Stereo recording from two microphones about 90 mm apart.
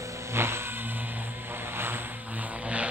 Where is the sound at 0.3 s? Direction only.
30° right (ahead or behind).